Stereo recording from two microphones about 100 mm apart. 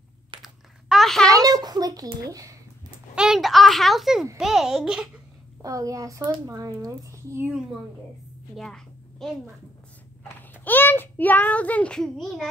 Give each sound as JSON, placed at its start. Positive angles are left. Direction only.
{"t": 0.4, "sound": "a sound", "side_deg": 0}
{"t": 1.2, "sound": "a child's voice", "side_deg": -35}
{"t": 3.2, "sound": "a child's voice", "side_deg": -5}
{"t": 5.6, "sound": "a child's voice", "side_deg": -35}
{"t": 8.5, "sound": "a sound", "side_deg": 5}
{"t": 10.5, "sound": "a child's voice", "side_deg": 20}